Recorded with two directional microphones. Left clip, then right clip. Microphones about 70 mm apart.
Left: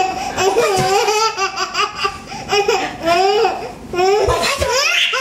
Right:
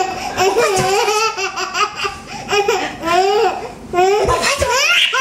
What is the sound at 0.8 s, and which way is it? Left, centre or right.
Laughter, right.